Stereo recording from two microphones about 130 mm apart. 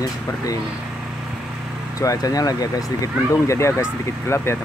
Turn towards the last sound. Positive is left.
turn(degrees=20)  # may be behind; listen again after turning